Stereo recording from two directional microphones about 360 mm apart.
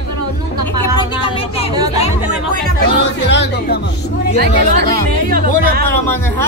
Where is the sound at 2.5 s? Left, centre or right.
Left.